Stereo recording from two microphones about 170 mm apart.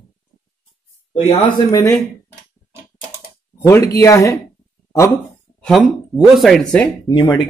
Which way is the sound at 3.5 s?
15° left (ahead or behind).